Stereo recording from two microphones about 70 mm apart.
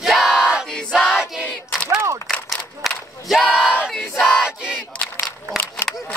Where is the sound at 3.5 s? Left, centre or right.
Centre.